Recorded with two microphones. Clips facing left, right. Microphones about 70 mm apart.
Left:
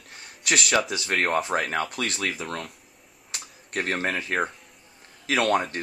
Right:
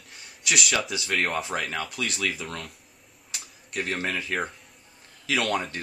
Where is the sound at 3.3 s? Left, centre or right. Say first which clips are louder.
Left 3 dB; left.